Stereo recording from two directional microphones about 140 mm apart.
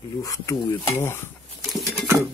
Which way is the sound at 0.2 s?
20° left (ahead or behind).